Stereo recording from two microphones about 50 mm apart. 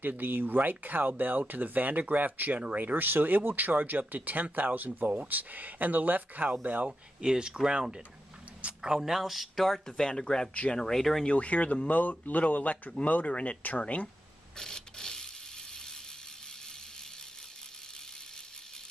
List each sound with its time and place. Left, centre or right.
0.0 s speech: right
6.9 s speech: centre
9.8 s speech: centre
10.8 s speech: centre
11.2 s speech: left
14.6 s printer: centre